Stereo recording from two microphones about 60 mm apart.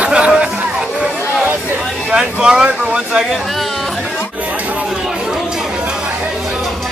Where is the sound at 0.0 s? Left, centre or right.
Centre.